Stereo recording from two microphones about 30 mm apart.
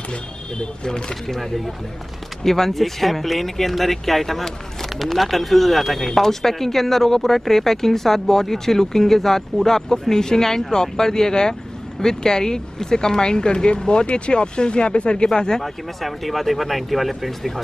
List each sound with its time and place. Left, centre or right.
0.8 s speech: left
2.4 s speech: centre
15.6 s speech: centre